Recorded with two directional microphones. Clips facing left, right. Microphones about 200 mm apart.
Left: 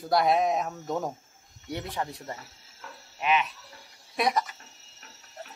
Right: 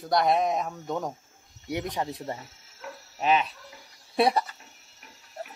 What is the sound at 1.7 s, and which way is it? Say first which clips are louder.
Speech: right 3 dB; 15° right (ahead or behind).